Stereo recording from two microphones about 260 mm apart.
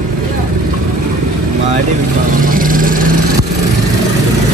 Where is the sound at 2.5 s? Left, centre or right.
Right.